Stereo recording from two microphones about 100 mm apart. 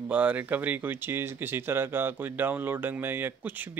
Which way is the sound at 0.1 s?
15° right (ahead or behind).